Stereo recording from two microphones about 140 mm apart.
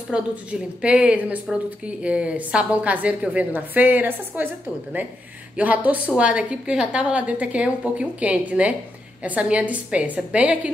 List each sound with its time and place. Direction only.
0.1 s a woman's voice: 10° right (ahead or behind)
5.6 s a woman's voice: 10° right (ahead or behind)